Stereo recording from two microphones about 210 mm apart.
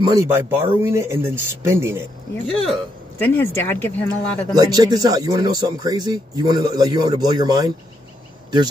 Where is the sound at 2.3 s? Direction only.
5° left (ahead or behind).